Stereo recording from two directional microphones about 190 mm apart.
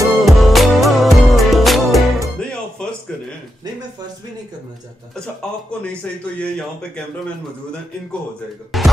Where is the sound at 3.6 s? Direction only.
20° right (ahead or behind).